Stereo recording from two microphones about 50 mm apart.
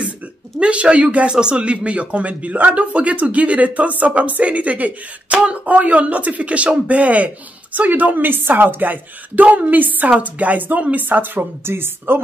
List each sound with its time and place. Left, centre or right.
0.6 s a woman's voice: right